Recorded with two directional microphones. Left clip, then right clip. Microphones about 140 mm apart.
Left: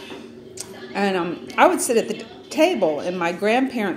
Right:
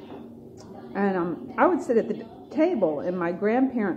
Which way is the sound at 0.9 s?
30° left (ahead or behind).